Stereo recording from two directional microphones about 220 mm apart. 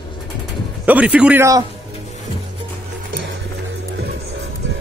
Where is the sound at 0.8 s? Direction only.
5° right (ahead or behind).